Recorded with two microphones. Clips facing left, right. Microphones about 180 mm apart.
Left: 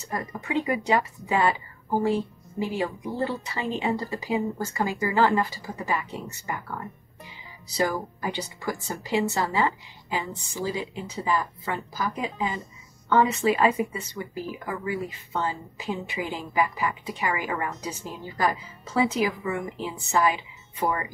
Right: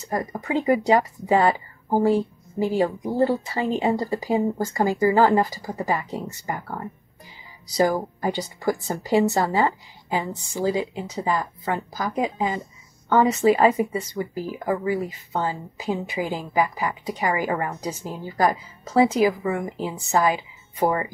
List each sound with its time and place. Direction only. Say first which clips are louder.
0.4 s a woman's voice: right 5 dB; 40° right (ahead or behind)
18.9 s speech: right 6 dB; 35° right (ahead or behind)